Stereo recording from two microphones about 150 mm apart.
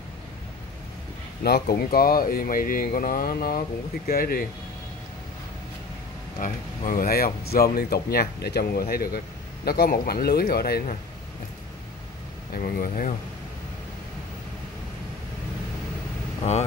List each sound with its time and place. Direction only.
1.4 s speech: 90° left; by 4.5 s 75° left (ahead or behind)
6.4 s speech: 70° left (ahead or behind); by 11.0 s 90° left
12.5 s speech: 70° left (ahead or behind)